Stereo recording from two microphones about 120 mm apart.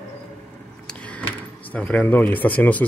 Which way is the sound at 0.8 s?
10° left (ahead or behind).